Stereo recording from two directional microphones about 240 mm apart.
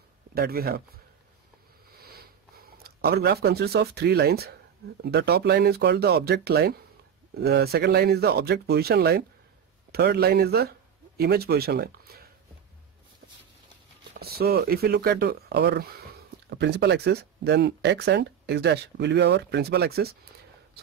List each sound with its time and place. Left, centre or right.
0.3 s speech: right
1.9 s a sound: right
5.0 s speech: right
14.1 s speech: right